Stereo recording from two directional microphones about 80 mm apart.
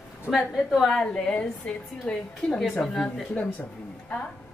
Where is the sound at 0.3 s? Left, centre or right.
Centre.